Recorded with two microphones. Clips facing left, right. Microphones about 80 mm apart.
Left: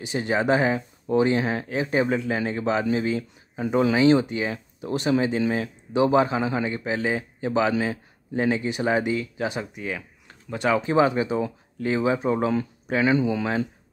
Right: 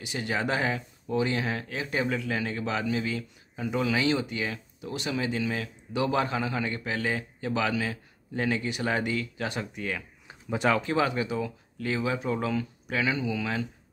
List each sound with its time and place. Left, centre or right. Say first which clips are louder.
0.0 s speech: left 6 dB; left; by 10.0 s centre
10.2 s a sound: even; centre
10.8 s speech: left 6 dB; left